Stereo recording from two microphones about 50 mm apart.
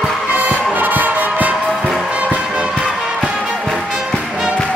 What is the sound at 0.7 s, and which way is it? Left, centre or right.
Music, right.